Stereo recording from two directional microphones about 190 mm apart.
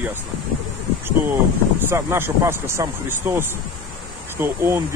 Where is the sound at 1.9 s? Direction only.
10° right (ahead or behind).